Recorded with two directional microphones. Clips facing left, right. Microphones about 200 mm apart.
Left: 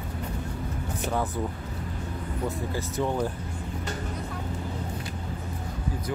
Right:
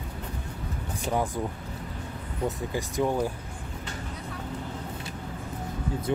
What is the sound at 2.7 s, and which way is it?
Speech, 15° right (ahead or behind).